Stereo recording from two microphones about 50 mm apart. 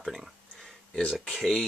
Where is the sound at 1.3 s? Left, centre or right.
Centre.